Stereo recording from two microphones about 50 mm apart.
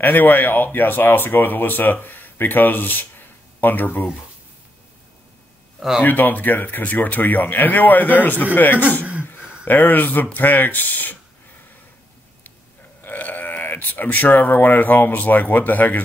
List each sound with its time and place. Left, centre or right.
0.0 s speech: left
5.8 s speech: centre
6.0 s speech: left
9.3 s a sound: left
10.3 s speech: left
13.0 s speech: left